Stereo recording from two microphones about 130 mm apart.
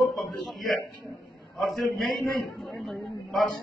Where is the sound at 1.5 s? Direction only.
Centre (ahead or behind).